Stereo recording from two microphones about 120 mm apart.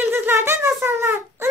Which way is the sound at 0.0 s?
20° right (ahead or behind).